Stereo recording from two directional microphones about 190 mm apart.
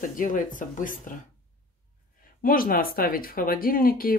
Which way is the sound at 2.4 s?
50° left (ahead or behind).